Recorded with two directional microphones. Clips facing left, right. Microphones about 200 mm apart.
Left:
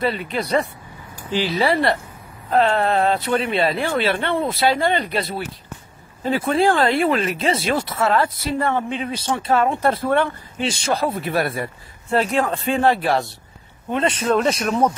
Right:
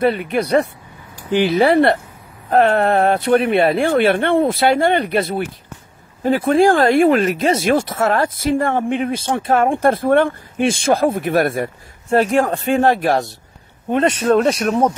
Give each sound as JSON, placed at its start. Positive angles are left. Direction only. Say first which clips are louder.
{"t": 0.0, "sound": "speech", "louder": "right 6 dB", "side_deg": -50}
{"t": 6.2, "sound": "speech", "louder": "right 5 dB", "side_deg": -50}